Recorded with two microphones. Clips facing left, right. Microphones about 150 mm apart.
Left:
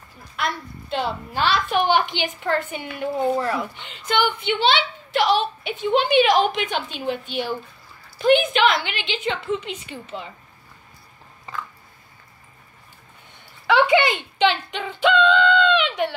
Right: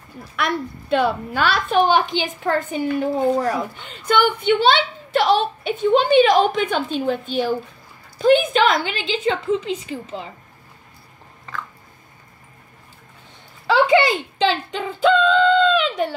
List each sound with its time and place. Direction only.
0.4 s a woman's voice: 55° right (ahead or behind)
2.7 s a woman's voice: 35° right (ahead or behind)
13.7 s speech: 35° right (ahead or behind)